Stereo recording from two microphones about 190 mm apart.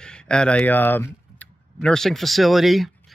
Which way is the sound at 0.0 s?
5° left (ahead or behind).